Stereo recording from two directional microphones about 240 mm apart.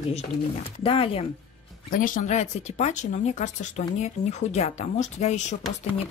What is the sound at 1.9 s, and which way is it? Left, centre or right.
Speech, left.